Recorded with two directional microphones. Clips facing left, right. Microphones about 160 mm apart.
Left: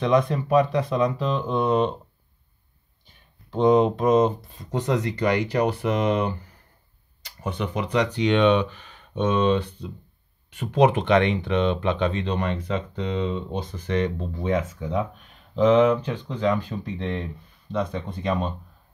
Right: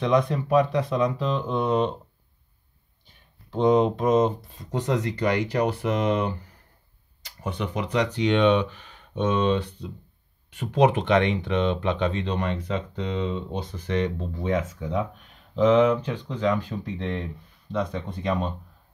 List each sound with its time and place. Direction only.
0.0 s speech: 55° left (ahead or behind)
3.5 s speech: 55° left (ahead or behind)
4.7 s speech: 70° left (ahead or behind)
7.5 s speech: 55° left (ahead or behind); by 8.6 s 75° left (ahead or behind)
9.1 s speech: 60° left (ahead or behind)
10.7 s speech: 65° left (ahead or behind); by 14.1 s 45° left (ahead or behind)
14.4 s speech: 30° left (ahead or behind)
17.7 s speech: 25° left (ahead or behind)